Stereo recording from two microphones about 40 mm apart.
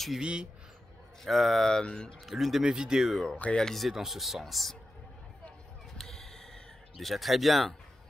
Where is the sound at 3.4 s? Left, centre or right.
Left.